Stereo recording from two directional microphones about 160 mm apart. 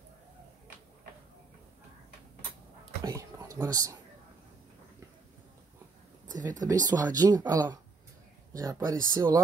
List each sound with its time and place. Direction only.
3.0 s speech: 20° right (ahead or behind)
6.2 s speech: 50° right (ahead or behind)
6.7 s speech: 25° right (ahead or behind)